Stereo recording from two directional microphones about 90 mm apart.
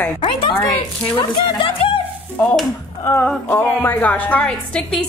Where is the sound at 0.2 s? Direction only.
65° left (ahead or behind).